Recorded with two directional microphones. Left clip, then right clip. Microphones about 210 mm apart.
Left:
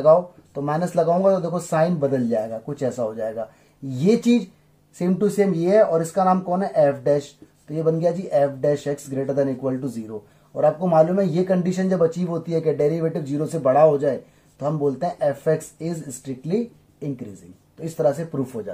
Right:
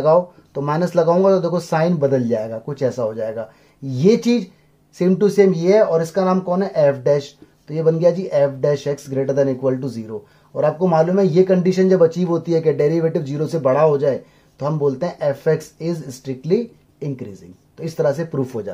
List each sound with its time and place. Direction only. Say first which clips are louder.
0.7 s a man's voice: right 4 dB; 35° right (ahead or behind)
17.7 s a man's voice: right 2 dB; 40° right (ahead or behind)